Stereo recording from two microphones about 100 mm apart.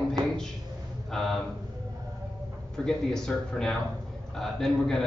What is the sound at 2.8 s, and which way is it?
A man's voice, 5° left (ahead or behind).